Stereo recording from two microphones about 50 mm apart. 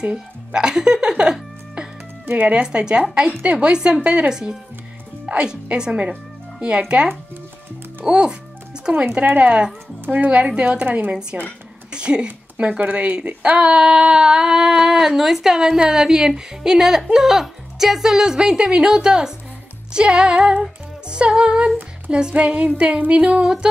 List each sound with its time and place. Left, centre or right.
0.0 s speech: right
2.2 s speech: right
2.5 s speech: centre
4.3 s speech: centre
9.0 s speech: right
13.6 s speech: centre